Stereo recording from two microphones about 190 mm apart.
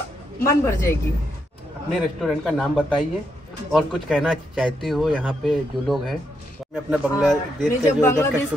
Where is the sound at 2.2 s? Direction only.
Centre (ahead or behind).